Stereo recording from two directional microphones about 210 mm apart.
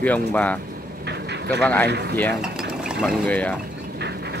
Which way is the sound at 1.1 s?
55° right (ahead or behind).